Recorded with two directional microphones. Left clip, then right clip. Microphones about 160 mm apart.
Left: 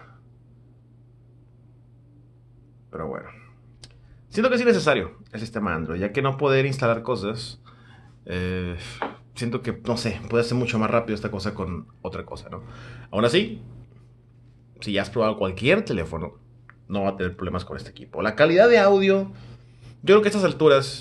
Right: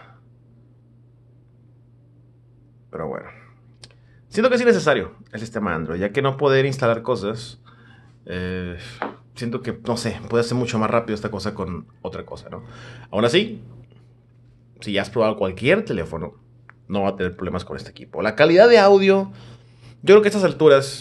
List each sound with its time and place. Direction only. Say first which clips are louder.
2.9 s speech: right 3 dB; 15° right (ahead or behind)
14.8 s speech: right 3 dB; 10° right (ahead or behind)
16.6 s speech: right 3 dB; 20° right (ahead or behind)